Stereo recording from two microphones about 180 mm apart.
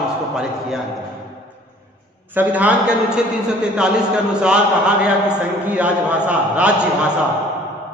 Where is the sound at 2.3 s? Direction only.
10° right (ahead or behind).